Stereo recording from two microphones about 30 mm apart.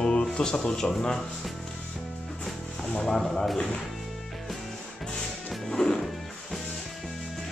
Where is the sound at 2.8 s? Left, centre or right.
Left.